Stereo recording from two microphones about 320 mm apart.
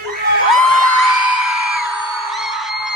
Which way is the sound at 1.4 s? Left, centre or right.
Centre.